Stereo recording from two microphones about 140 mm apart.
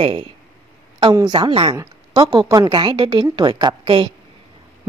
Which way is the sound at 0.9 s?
30° right (ahead or behind).